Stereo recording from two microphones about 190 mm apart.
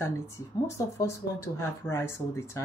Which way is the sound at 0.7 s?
15° left (ahead or behind).